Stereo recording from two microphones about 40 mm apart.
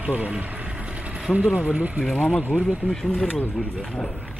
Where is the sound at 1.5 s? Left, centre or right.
Right.